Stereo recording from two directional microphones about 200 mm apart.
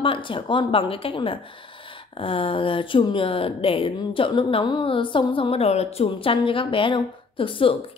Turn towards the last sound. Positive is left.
turn(degrees=25)  # may be behind; listen again after turning